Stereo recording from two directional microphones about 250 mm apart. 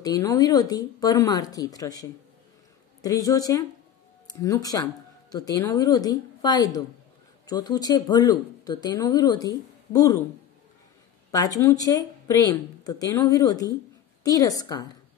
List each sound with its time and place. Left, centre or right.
0.0 s speech: centre
11.3 s speech: centre